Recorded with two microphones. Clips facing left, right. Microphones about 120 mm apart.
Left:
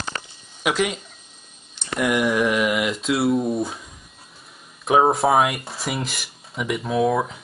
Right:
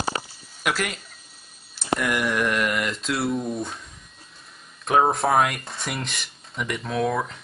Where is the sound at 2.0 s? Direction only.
5° left (ahead or behind).